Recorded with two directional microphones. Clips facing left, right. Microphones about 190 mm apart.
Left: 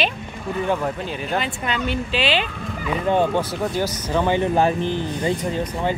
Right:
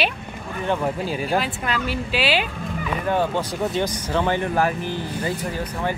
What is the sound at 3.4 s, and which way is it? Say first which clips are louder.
Speech: left 1 dB; 5° left (ahead or behind).